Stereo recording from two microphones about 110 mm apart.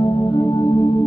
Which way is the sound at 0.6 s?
30° left (ahead or behind).